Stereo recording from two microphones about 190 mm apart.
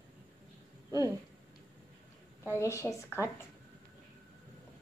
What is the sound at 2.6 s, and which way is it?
Speech, 15° left (ahead or behind).